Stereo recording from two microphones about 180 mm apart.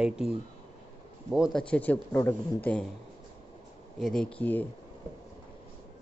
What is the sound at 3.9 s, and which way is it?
Speech, 5° left (ahead or behind).